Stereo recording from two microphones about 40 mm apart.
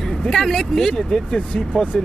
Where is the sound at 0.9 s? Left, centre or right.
Left.